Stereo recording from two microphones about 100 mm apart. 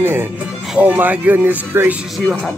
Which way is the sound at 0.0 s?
20° right (ahead or behind).